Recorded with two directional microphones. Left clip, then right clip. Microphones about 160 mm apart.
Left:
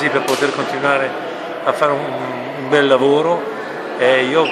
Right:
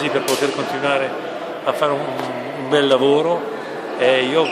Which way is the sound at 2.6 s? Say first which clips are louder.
Left 2 dB; centre (ahead or behind).